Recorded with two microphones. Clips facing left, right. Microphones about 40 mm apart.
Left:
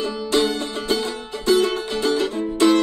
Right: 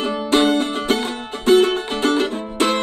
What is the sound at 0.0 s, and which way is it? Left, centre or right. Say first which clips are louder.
Music: right 3 dB; right.